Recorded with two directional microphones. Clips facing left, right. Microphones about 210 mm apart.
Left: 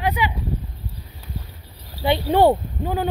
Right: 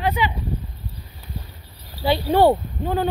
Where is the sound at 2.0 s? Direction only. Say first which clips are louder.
Even; 20° left (ahead or behind).